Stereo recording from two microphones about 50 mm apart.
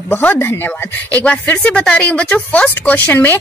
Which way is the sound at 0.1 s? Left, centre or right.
Left.